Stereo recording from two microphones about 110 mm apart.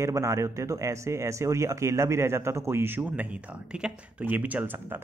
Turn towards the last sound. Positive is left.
turn(degrees=-15)  # may be behind; listen again after turning